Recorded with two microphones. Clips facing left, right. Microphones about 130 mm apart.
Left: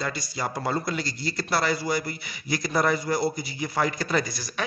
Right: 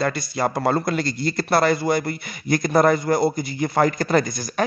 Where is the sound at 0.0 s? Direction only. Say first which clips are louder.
Right 8 dB; 60° right (ahead or behind).